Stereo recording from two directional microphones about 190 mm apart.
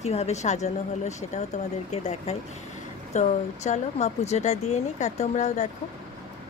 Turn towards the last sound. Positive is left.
turn(degrees=35)  # may be behind; listen again after turning